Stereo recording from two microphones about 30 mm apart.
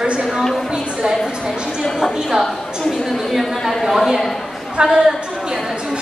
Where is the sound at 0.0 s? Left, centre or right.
Right.